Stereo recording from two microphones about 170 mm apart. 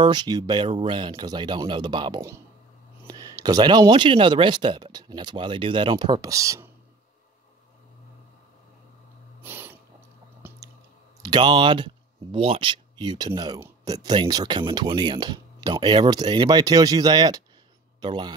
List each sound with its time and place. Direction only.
0.0 s speech: 25° right (ahead or behind)
9.4 s throat clearing: 10° right (ahead or behind)
10.4 s chewing: 10° right (ahead or behind)
11.2 s speech: 25° right (ahead or behind)